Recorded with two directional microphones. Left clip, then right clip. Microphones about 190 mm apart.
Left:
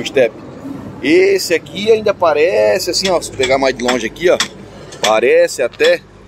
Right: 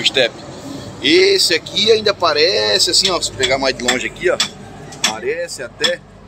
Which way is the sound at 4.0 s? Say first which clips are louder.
Left 4 dB; 35° left (ahead or behind).